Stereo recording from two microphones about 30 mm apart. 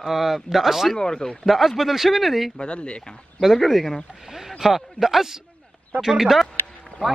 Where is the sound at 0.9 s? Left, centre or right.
Left.